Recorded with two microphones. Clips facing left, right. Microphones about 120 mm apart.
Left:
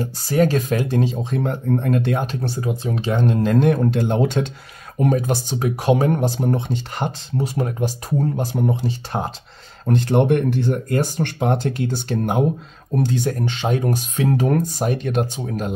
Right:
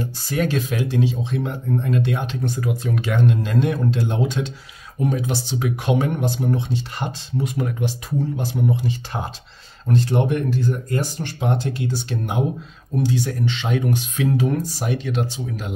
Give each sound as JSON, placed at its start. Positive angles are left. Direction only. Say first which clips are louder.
{"t": 0.0, "sound": "speech", "louder": "left 5 dB", "side_deg": 40}
{"t": 2.4, "sound": "speech", "louder": "even", "side_deg": 30}
{"t": 3.4, "sound": "speech", "louder": "left 4 dB", "side_deg": 50}
{"t": 7.0, "sound": "speech", "louder": "left 6 dB", "side_deg": 55}
{"t": 7.4, "sound": "speech", "louder": "left 2 dB", "side_deg": 40}
{"t": 9.8, "sound": "speech", "louder": "left 3 dB", "side_deg": 60}